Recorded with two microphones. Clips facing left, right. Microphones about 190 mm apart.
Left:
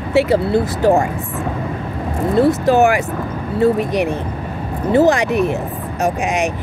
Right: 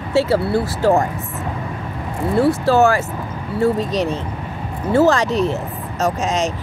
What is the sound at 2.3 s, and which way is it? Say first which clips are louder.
Speech: left 2 dB; 20° left (ahead or behind).